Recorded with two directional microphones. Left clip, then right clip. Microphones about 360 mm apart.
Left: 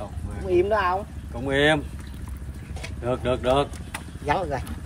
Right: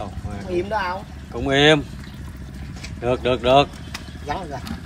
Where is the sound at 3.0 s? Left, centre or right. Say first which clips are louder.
Right 5 dB; centre.